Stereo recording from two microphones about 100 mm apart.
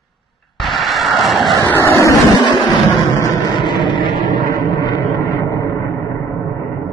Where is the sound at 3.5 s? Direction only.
50° left (ahead or behind).